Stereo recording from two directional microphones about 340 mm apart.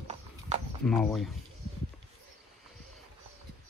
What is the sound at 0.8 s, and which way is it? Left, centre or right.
Speech, centre.